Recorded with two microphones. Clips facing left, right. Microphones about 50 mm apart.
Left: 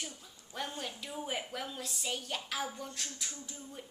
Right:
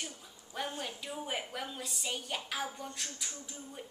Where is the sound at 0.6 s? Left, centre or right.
Centre.